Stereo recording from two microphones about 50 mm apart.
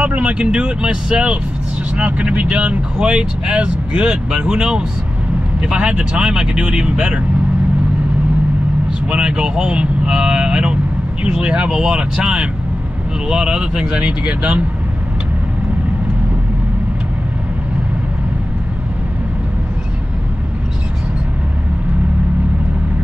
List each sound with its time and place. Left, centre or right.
0.0 s speech: right
7.0 s speech: right
9.1 s speech: centre